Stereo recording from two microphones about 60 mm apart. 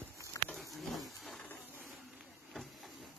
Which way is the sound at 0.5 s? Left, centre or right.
Centre.